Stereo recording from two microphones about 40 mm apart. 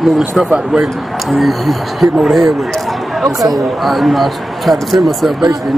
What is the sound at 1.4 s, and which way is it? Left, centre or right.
Speech, centre.